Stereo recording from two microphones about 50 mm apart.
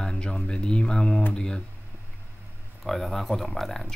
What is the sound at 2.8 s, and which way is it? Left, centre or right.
Speech, centre.